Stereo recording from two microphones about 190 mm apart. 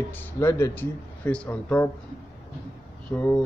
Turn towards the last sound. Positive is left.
turn(degrees=5)  # may be behind; listen again after turning